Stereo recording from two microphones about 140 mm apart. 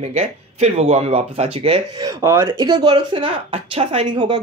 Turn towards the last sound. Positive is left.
turn(degrees=-35)  # may be behind; listen again after turning